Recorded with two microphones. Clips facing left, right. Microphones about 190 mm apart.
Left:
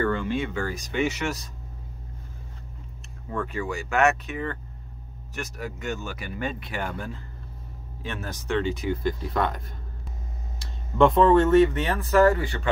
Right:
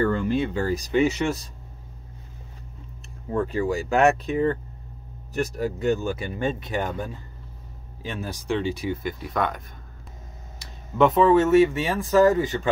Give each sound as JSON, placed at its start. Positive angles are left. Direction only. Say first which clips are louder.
{"t": 0.3, "sound": "speech", "louder": "right 4 dB", "side_deg": -40}
{"t": 3.3, "sound": "speech", "louder": "right 6 dB", "side_deg": -35}
{"t": 9.3, "sound": "speech", "louder": "right 3 dB", "side_deg": 0}
{"t": 11.0, "sound": "speech", "louder": "even", "side_deg": -5}